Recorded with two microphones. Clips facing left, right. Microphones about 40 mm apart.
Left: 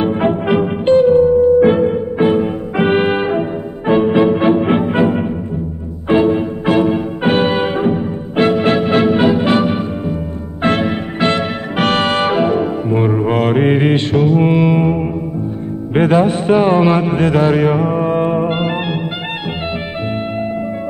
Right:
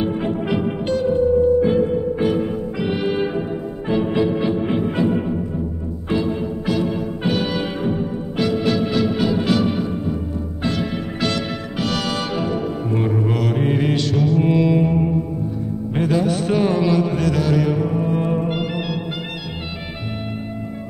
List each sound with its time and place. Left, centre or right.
0.0 s music: left
2.8 s music: left